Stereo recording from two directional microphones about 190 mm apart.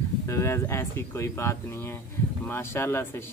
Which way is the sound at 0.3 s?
15° left (ahead or behind).